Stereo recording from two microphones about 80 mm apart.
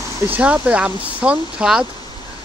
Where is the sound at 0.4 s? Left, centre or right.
Centre.